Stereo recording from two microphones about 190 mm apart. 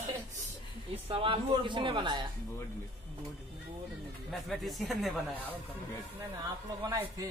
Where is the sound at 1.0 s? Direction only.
30° right (ahead or behind).